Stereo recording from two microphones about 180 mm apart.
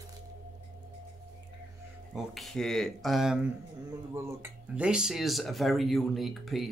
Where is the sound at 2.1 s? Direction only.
Centre (ahead or behind).